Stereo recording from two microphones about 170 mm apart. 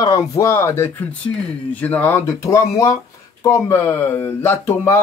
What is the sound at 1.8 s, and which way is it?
Speech, 10° left (ahead or behind).